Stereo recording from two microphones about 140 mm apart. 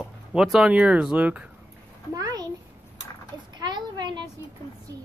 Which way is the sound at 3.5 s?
30° right (ahead or behind).